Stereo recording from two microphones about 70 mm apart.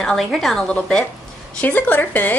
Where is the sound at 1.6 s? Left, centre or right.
Left.